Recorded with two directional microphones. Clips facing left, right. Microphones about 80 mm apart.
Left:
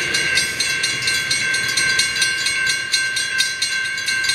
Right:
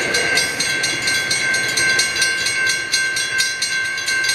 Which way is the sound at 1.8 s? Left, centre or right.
Centre.